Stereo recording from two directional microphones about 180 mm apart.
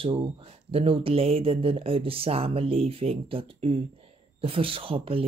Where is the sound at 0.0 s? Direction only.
30° right (ahead or behind).